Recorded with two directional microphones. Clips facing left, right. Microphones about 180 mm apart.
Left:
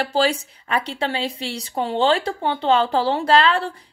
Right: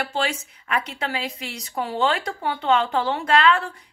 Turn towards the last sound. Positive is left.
turn(degrees=30)  # may be behind; listen again after turning